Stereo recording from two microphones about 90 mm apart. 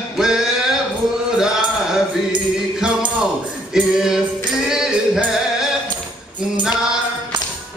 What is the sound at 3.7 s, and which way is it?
Music, 5° right (ahead or behind).